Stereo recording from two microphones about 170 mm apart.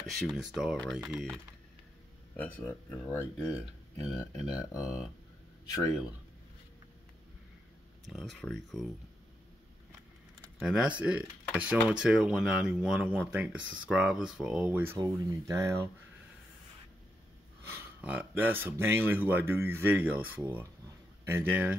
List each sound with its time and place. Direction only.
0.2 s speech: centre (ahead or behind); by 4.6 s 20° left (ahead or behind)
8.1 s speech: centre (ahead or behind)
10.6 s speech: 5° right (ahead or behind)
17.6 s speech: 10° right (ahead or behind)